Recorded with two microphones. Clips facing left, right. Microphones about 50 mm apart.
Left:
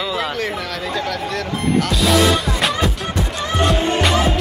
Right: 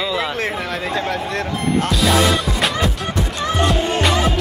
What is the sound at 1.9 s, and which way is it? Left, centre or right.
Music, centre.